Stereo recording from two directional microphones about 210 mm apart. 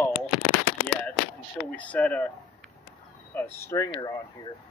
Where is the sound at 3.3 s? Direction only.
10° left (ahead or behind).